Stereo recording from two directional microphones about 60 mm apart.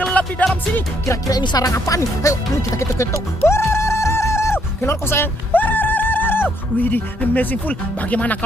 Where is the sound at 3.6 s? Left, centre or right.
Left.